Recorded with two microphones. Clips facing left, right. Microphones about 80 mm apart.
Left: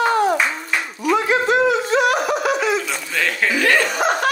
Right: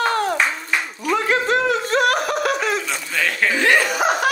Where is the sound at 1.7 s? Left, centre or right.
Right.